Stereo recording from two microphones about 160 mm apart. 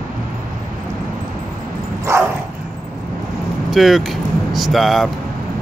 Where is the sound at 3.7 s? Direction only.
Centre (ahead or behind).